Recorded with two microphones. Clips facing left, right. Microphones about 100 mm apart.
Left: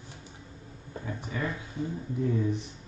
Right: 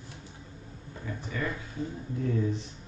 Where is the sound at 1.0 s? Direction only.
15° left (ahead or behind).